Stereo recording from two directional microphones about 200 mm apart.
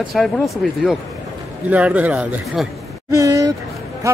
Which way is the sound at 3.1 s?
15° right (ahead or behind).